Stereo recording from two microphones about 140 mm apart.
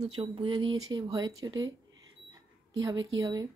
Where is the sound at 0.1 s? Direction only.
40° right (ahead or behind).